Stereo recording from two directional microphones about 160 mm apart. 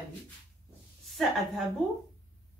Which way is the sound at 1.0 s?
Centre (ahead or behind).